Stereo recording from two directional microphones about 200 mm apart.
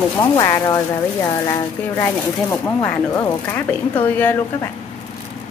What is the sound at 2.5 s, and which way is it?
Speech, 10° left (ahead or behind).